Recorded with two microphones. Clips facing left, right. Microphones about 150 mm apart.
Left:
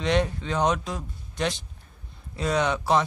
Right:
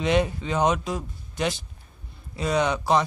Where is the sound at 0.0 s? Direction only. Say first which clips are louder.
Right 2 dB; 5° right (ahead or behind).